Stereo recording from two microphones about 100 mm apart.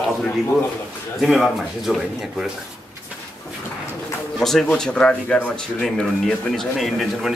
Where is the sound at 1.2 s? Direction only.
Centre (ahead or behind).